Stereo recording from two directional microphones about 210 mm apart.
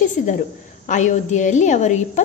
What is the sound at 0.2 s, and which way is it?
A woman's voice, 40° left (ahead or behind).